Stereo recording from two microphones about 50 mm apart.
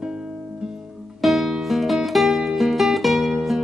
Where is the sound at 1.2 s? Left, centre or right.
Centre.